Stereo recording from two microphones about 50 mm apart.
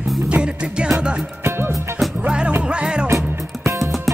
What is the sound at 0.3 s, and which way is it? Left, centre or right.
Music, right.